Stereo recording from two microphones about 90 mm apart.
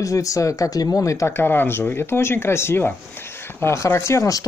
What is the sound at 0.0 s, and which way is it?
Speech, 40° left (ahead or behind).